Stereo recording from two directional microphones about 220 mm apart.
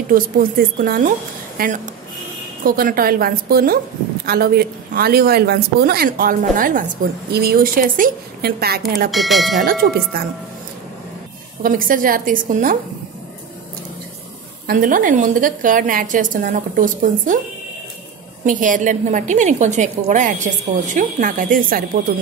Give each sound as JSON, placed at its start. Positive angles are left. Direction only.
{"t": 0.1, "sound": "a woman's voice", "side_deg": -40}
{"t": 9.1, "sound": "speech", "side_deg": 0}
{"t": 9.6, "sound": "a woman's voice", "side_deg": -45}
{"t": 11.6, "sound": "a woman's voice", "side_deg": -40}
{"t": 14.7, "sound": "a woman's voice", "side_deg": -40}
{"t": 18.4, "sound": "a woman's voice", "side_deg": -35}